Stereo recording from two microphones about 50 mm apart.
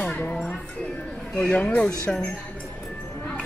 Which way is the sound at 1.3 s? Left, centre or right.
Left.